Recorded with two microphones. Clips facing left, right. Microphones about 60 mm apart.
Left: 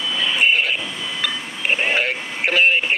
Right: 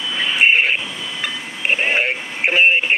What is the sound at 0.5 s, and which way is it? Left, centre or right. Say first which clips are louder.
Radio: right 5 dB; right.